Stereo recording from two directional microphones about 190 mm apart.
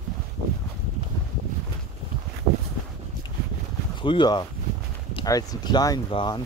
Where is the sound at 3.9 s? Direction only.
25° left (ahead or behind).